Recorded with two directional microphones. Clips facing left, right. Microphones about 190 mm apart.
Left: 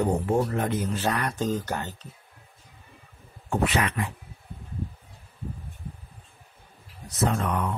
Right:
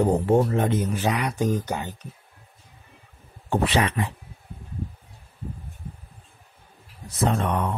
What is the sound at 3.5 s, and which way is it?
Speech, 30° right (ahead or behind).